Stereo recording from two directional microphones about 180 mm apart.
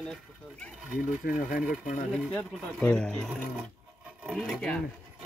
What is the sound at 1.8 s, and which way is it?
Speech, 40° left (ahead or behind).